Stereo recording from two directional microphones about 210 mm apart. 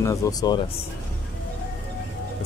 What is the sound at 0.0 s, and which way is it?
Speech, 15° left (ahead or behind).